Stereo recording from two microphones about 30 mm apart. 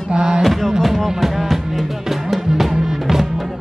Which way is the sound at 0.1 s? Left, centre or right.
Right.